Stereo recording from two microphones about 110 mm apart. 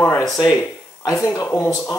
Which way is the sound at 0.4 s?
30° left (ahead or behind).